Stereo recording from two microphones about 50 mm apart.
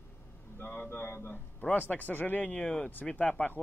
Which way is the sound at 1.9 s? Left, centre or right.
Left.